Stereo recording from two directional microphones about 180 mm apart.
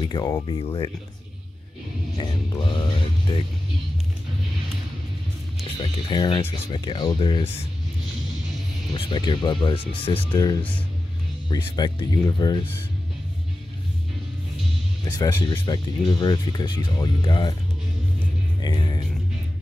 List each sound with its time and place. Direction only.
0.0 s speech: 20° left (ahead or behind)
2.1 s speech: 25° left (ahead or behind)
5.8 s speech: 25° left (ahead or behind)
8.9 s speech: 25° left (ahead or behind)
15.0 s speech: 20° left (ahead or behind)
18.6 s speech: 25° left (ahead or behind)